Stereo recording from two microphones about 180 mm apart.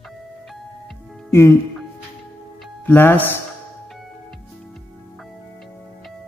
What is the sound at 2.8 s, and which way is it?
Speech, 10° left (ahead or behind).